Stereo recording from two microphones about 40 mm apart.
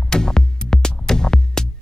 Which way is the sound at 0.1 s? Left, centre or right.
Centre.